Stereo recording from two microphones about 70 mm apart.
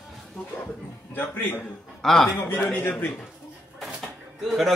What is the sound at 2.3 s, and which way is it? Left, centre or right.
Speech, left.